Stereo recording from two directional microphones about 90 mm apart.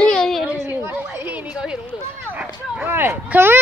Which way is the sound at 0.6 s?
25° right (ahead or behind).